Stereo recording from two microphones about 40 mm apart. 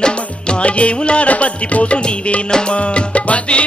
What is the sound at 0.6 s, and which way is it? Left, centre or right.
Music, left.